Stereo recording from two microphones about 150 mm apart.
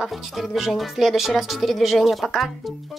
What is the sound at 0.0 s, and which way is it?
Speech, centre (ahead or behind).